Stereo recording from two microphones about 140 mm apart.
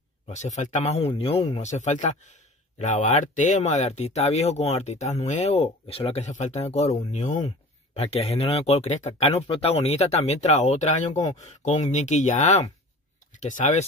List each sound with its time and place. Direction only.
0.3 s speech: 55° left (ahead or behind)
1.6 s speech: 55° left (ahead or behind)
7.9 s speech: 45° left (ahead or behind); by 13.8 s 60° left (ahead or behind)